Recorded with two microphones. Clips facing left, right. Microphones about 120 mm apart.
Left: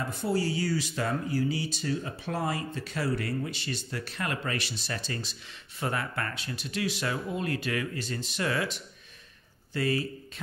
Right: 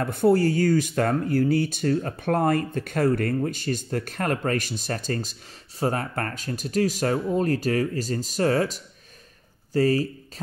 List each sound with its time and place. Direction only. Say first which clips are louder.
0.0 s speech: right 9 dB; 55° right (ahead or behind); by 10.4 s 40° right (ahead or behind)